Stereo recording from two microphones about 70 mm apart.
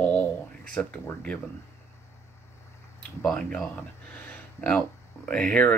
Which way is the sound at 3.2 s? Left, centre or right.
Centre.